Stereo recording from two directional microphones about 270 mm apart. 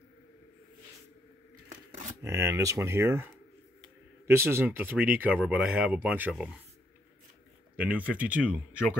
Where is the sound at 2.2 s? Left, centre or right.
Centre.